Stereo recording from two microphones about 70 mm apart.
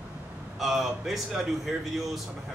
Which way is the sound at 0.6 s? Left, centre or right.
Centre.